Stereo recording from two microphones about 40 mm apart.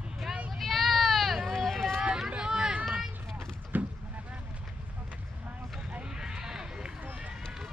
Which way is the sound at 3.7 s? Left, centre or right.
Right.